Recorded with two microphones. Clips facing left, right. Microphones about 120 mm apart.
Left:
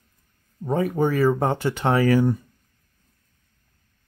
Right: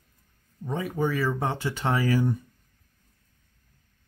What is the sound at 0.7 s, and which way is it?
Speech, 50° left (ahead or behind).